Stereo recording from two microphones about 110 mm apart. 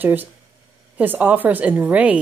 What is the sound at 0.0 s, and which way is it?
A woman's voice, 15° right (ahead or behind).